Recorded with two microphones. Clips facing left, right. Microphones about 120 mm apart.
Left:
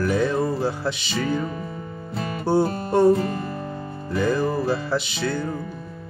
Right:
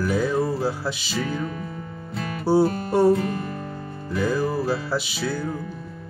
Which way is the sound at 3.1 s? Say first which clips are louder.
Even; 30° left (ahead or behind).